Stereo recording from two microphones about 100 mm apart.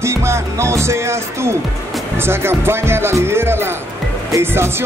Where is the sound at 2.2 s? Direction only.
25° right (ahead or behind).